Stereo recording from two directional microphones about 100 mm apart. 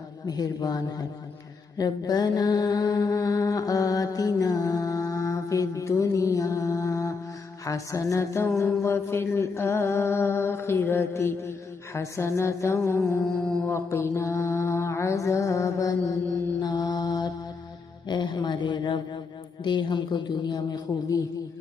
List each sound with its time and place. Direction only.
0.3 s mantra: 40° left (ahead or behind)
7.6 s a sound: 35° left (ahead or behind)
13.2 s mantra: centre (ahead or behind)
13.7 s mantra: 30° left (ahead or behind)
18.0 s speech: 45° left (ahead or behind)